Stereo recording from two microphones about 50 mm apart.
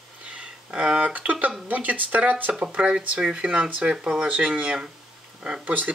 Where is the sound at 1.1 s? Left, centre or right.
Right.